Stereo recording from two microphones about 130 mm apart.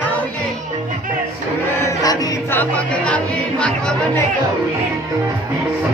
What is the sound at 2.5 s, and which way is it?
Speech, 10° left (ahead or behind).